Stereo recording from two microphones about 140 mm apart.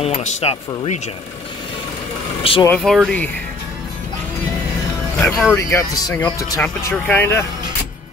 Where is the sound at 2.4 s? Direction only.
40° left (ahead or behind).